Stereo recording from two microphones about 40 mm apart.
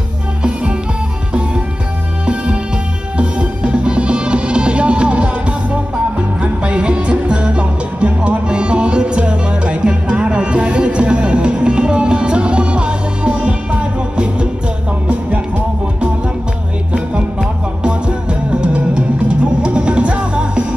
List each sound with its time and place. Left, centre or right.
2.2 s music: right
6.4 s music: right
17.4 s music: right